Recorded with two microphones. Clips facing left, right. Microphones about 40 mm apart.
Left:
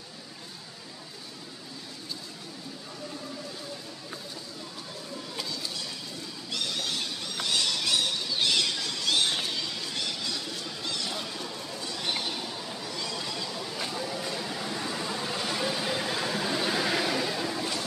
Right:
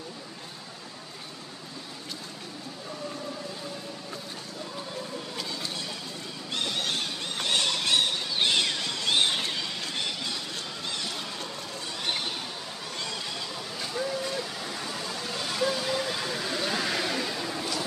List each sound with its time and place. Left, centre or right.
6.5 s neigh: right
13.9 s vehicle: centre